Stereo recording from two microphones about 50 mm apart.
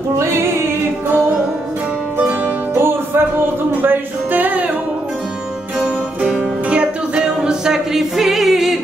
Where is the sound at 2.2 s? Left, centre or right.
Right.